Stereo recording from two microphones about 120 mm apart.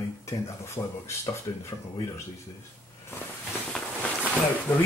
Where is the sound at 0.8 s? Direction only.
35° left (ahead or behind).